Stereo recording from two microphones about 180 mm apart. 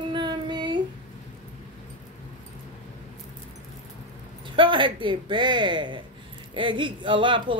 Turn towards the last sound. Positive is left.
turn(degrees=-25)  # may be behind; listen again after turning